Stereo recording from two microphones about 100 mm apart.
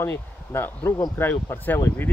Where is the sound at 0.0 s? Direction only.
25° left (ahead or behind).